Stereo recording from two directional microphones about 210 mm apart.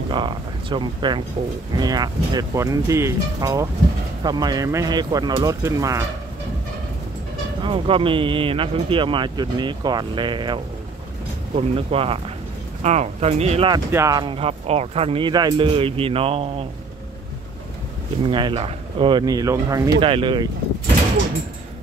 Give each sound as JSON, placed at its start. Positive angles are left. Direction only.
{"t": 0.1, "sound": "speech", "side_deg": -20}
{"t": 7.6, "sound": "speech", "side_deg": -25}
{"t": 13.9, "sound": "speech", "side_deg": -15}
{"t": 18.2, "sound": "speech", "side_deg": -25}